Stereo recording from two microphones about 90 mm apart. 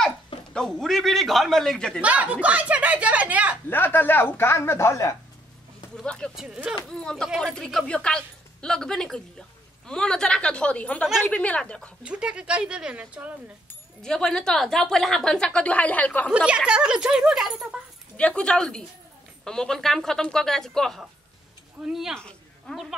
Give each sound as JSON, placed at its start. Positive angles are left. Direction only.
{"t": 0.5, "sound": "a woman's voice", "side_deg": 5}
{"t": 2.0, "sound": "speech", "side_deg": -15}
{"t": 3.7, "sound": "speech", "side_deg": 25}
{"t": 6.0, "sound": "a woman's voice", "side_deg": 10}
{"t": 6.3, "sound": "speech", "side_deg": -10}
{"t": 6.9, "sound": "a woman's voice", "side_deg": 10}
{"t": 12.0, "sound": "speech", "side_deg": -10}
{"t": 14.0, "sound": "a woman's voice", "side_deg": 5}
{"t": 16.3, "sound": "speech", "side_deg": -10}
{"t": 18.1, "sound": "a woman's voice", "side_deg": 10}
{"t": 22.1, "sound": "a sound", "side_deg": 5}